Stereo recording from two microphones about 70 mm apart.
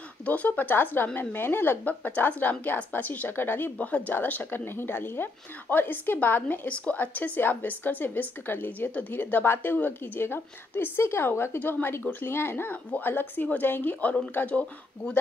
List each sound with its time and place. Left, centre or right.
0.2 s speech: left
3.7 s speech: centre